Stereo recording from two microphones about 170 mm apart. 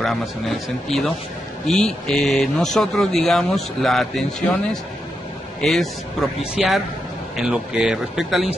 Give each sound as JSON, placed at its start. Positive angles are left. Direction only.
{"t": 0.0, "sound": "speech", "side_deg": 0}
{"t": 5.6, "sound": "speech", "side_deg": 0}